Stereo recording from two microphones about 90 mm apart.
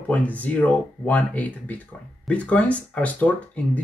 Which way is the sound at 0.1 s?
15° left (ahead or behind).